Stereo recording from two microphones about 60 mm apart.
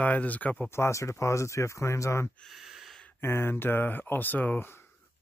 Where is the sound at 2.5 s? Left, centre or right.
Centre.